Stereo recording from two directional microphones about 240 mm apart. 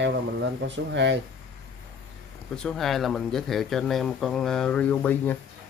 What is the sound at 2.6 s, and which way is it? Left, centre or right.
Speech, centre.